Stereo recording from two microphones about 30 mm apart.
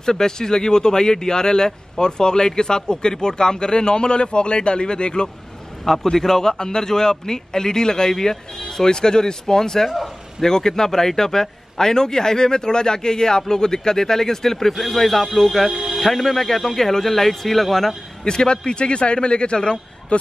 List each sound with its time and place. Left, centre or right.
0.0 s speech: centre
6.1 s a man's voice: centre
18.2 s a man's voice: left